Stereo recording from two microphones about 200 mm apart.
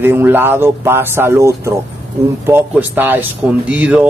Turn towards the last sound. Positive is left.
turn(degrees=-5)  # may be behind; listen again after turning